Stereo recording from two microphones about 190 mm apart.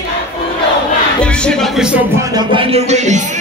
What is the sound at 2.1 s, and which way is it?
Music, 25° right (ahead or behind).